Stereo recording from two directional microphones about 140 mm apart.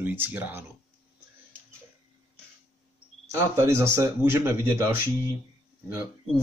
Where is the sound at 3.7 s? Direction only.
20° right (ahead or behind).